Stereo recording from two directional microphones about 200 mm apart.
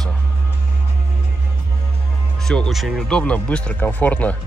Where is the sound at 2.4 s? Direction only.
Centre (ahead or behind).